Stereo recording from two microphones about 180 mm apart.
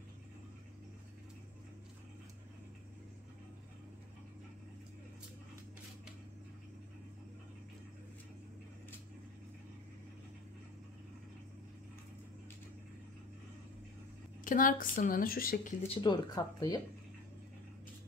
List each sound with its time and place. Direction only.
14.4 s a woman's voice: 50° left (ahead or behind)
15.9 s speech: 25° left (ahead or behind)